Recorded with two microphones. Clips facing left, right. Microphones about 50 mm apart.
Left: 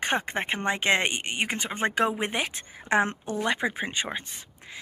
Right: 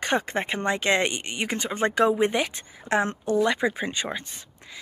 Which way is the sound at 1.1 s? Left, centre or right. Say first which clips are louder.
Left 1 dB; left.